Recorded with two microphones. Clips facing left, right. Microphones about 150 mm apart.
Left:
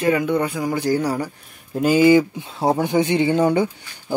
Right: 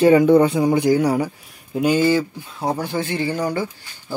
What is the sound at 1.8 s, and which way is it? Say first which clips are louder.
Speech: left 3 dB; 5° left (ahead or behind).